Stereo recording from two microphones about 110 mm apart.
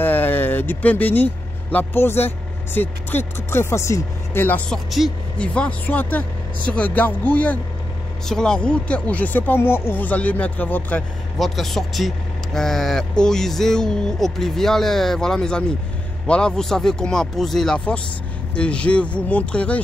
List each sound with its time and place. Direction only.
0.0 s speech: 20° left (ahead or behind)
4.7 s speech: centre (ahead or behind)
5.4 s speech: 10° left (ahead or behind)
11.3 s speech: centre (ahead or behind)